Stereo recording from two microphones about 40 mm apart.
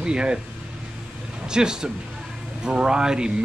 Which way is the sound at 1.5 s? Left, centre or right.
Centre.